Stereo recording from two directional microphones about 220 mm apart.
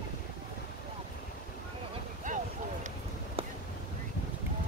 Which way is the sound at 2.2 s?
35° right (ahead or behind).